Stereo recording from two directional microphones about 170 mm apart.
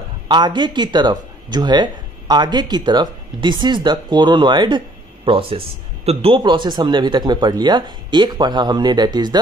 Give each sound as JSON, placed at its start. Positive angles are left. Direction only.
{"t": 0.3, "sound": "speech", "side_deg": -25}